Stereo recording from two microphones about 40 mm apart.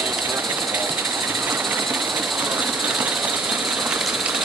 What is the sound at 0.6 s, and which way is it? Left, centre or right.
Vehicle, centre.